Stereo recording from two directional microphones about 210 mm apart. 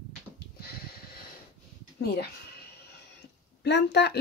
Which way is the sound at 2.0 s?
50° left (ahead or behind).